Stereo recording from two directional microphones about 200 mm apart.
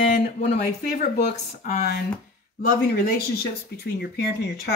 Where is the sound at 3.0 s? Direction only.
50° left (ahead or behind).